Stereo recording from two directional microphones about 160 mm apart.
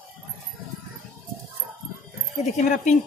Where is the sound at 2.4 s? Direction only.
50° left (ahead or behind).